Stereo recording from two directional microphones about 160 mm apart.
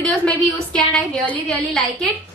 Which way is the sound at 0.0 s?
5° left (ahead or behind).